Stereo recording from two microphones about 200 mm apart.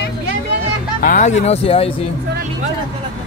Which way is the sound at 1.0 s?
40° left (ahead or behind).